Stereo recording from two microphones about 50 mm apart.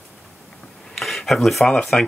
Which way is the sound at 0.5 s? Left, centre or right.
Centre.